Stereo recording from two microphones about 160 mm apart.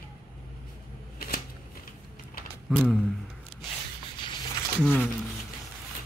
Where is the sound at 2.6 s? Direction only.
Centre (ahead or behind).